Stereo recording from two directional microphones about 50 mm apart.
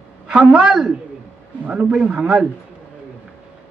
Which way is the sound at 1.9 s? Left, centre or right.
Centre.